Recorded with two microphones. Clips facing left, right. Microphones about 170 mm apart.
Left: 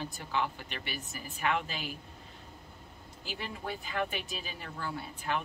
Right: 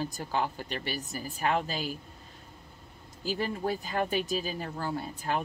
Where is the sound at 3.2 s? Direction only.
40° right (ahead or behind).